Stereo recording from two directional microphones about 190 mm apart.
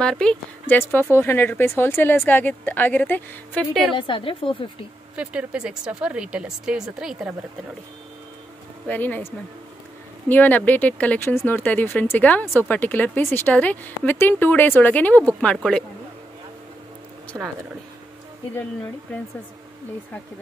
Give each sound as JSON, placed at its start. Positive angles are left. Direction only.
{"t": 0.0, "sound": "a woman's voice", "side_deg": 5}
{"t": 3.9, "sound": "a woman's voice", "side_deg": 25}
{"t": 5.1, "sound": "a woman's voice", "side_deg": -5}
{"t": 8.8, "sound": "a woman's voice", "side_deg": 10}
{"t": 17.3, "sound": "speech", "side_deg": -10}